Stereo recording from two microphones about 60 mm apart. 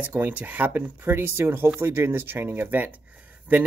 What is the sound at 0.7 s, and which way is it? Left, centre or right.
Speech, right.